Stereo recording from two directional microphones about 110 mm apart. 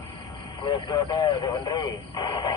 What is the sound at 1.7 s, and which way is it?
Speech, 45° left (ahead or behind).